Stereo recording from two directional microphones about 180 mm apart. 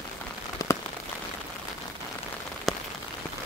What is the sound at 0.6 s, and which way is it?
Rain on surface, 20° left (ahead or behind).